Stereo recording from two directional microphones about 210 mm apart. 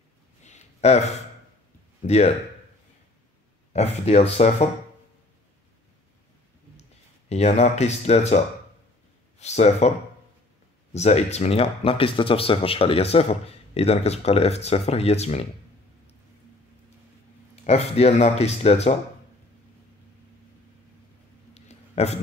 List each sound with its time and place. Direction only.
0.4 s a sound: 35° left (ahead or behind)
2.0 s speech: 30° left (ahead or behind)
3.7 s speech: 30° left (ahead or behind)
6.8 s speech: 30° left (ahead or behind)
9.4 s speech: 30° left (ahead or behind)
17.6 s speech: 30° left (ahead or behind)
21.5 s a sound: 30° left (ahead or behind)